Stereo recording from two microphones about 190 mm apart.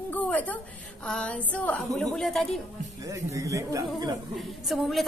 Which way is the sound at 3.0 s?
15° right (ahead or behind).